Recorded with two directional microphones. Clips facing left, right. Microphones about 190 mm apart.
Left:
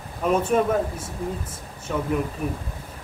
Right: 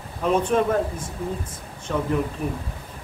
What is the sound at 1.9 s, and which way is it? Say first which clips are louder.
Speech: right 1 dB; 5° left (ahead or behind).